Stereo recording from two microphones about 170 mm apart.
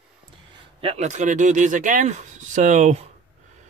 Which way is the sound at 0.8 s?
40° right (ahead or behind).